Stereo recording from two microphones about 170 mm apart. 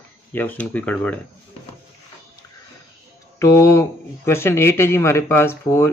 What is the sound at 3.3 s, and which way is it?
Speech, 15° left (ahead or behind).